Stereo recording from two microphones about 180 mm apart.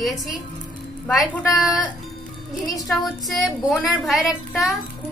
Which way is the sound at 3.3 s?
5° left (ahead or behind).